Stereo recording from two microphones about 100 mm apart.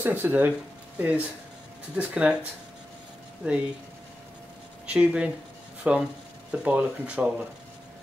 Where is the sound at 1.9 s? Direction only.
10° right (ahead or behind).